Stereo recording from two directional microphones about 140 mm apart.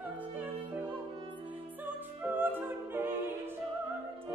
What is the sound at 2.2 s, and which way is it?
Music, 15° right (ahead or behind).